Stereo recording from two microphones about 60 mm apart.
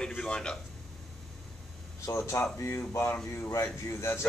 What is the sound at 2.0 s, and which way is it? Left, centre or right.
A man's voice, left.